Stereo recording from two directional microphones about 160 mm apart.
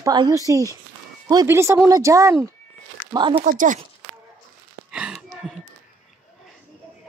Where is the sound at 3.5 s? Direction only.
55° right (ahead or behind).